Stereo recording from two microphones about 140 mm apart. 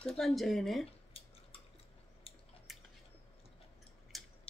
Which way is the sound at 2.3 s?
45° left (ahead or behind).